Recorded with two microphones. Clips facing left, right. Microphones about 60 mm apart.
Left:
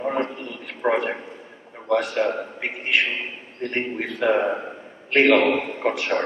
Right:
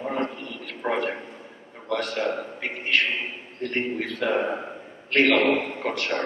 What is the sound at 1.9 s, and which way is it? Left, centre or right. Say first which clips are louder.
A man's voice: left 5 dB; centre.